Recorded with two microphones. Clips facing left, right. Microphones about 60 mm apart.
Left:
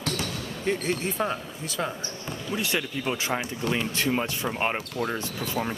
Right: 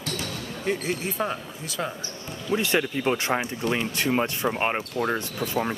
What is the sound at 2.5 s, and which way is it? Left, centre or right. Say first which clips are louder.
Speech: right 5 dB; right.